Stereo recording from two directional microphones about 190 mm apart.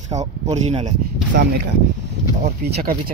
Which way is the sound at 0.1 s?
35° right (ahead or behind).